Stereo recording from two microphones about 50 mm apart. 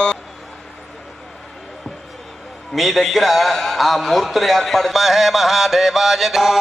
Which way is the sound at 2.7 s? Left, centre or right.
Centre.